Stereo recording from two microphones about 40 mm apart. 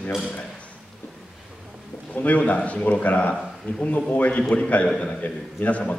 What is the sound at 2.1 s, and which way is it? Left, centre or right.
A man's voice, left.